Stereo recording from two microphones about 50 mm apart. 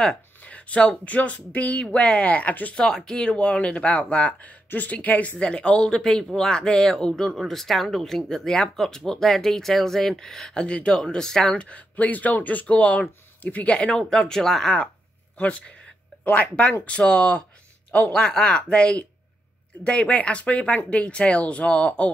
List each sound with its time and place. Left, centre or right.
0.4 s speech: left
2.8 s speech: centre; by 5.3 s left
5.4 s speech: centre
11.9 s speech: left; by 14.8 s centre
15.3 s speech: left